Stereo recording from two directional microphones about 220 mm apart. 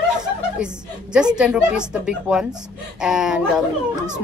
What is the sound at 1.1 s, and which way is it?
Speech, 5° right (ahead or behind).